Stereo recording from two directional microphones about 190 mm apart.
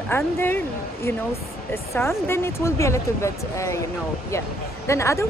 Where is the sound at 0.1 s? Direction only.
10° left (ahead or behind).